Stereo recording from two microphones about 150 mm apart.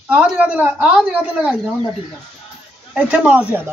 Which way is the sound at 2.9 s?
10° right (ahead or behind).